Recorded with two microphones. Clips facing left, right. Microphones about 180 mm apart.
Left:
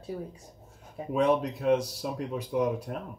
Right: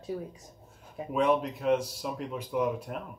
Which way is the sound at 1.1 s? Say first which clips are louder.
Left 1 dB; 35° left (ahead or behind).